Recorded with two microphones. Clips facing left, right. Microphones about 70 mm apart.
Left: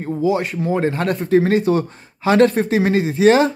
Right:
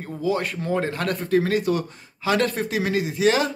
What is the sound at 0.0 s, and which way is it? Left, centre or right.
Speech, left.